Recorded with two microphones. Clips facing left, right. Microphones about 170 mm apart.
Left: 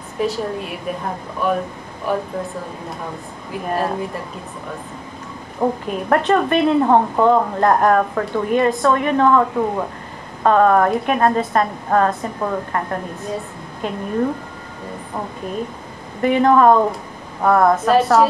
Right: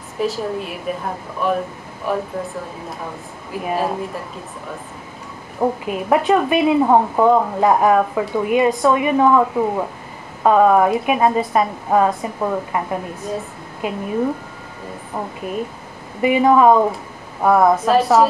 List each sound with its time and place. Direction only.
0.2 s a woman's voice: centre (ahead or behind)
5.6 s a woman's voice: 5° right (ahead or behind)
16.2 s a woman's voice: 5° right (ahead or behind)